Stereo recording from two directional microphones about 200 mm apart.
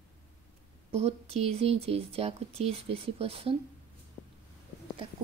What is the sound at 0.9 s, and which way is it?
Speech, 30° right (ahead or behind).